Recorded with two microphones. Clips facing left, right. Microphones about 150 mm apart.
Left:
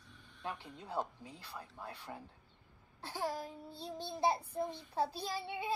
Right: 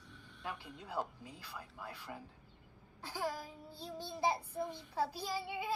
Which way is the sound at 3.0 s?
15° left (ahead or behind).